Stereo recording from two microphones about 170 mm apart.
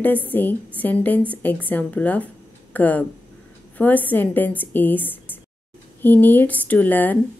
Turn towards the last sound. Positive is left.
turn(degrees=10)  # may be behind; listen again after turning